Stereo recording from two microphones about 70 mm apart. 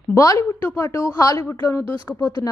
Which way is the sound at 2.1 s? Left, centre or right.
Centre.